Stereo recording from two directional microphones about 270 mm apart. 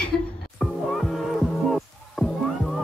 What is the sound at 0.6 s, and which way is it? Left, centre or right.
Music, centre.